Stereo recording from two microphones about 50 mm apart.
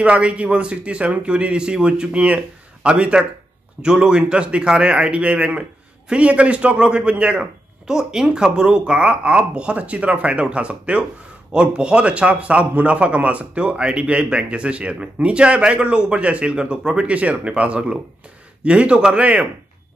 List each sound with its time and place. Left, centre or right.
0.0 s a man's voice: right